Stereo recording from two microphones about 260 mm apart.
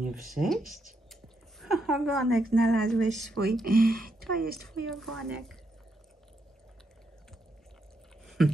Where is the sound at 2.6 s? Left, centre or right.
Centre.